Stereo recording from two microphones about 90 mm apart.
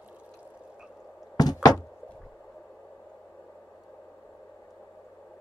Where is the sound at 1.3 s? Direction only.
45° left (ahead or behind).